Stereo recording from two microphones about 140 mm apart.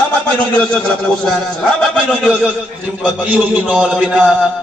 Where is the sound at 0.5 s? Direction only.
5° left (ahead or behind).